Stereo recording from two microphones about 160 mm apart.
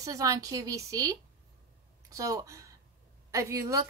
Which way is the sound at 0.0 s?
20° right (ahead or behind).